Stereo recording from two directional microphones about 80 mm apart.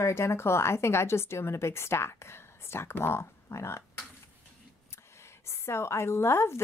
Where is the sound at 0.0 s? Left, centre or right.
Left.